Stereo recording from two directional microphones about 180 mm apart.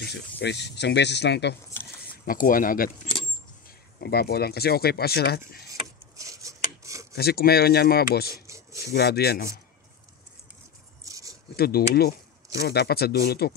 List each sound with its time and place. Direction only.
0.0 s speech: 70° left (ahead or behind)
2.0 s speech: 50° left (ahead or behind)
4.0 s speech: 60° left (ahead or behind)
5.7 s a sound: 20° right (ahead or behind)
7.2 s speech: 60° left (ahead or behind)
8.3 s a sound: 15° right (ahead or behind)
8.9 s speech: 60° left (ahead or behind)
11.1 s a sound: 20° right (ahead or behind)
11.5 s speech: 60° left (ahead or behind)